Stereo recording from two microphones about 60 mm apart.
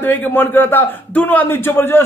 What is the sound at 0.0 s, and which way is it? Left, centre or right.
A man's voice, left.